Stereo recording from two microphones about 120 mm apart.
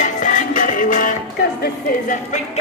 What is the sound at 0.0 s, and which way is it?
Music, 90° left.